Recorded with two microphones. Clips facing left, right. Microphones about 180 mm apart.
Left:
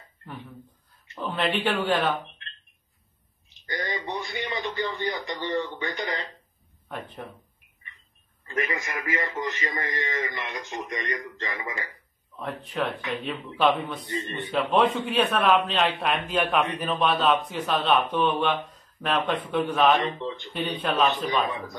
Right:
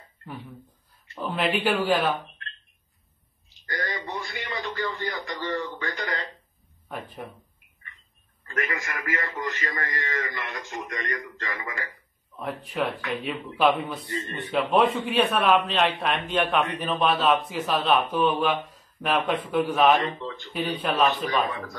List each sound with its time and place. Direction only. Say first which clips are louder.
1.1 s a man's voice: right 1 dB; 5° right (ahead or behind)
3.4 s a man's voice: even; 20° left (ahead or behind)
6.9 s speech: even; 5° right (ahead or behind)
8.5 s a man's voice: left 1 dB; 20° left (ahead or behind)
12.4 s a man's voice: right 1 dB; 5° right (ahead or behind)
20.2 s speech: left 3 dB; 20° left (ahead or behind)
20.5 s a man's voice: right 1 dB; 5° right (ahead or behind)